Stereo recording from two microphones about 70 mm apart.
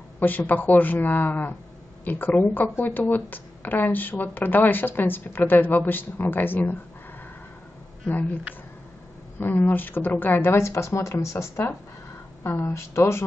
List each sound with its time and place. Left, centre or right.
0.2 s speech: left
8.1 s speech: left
9.4 s speech: left